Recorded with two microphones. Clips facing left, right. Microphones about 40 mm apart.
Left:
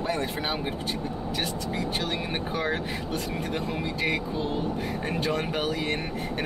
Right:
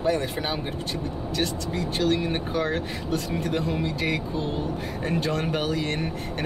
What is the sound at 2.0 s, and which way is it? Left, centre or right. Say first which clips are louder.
Speech: right 6 dB; centre.